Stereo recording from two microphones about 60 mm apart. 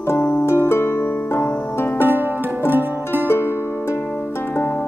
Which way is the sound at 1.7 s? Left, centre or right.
Left.